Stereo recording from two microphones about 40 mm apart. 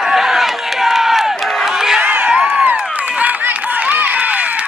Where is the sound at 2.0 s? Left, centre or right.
Right.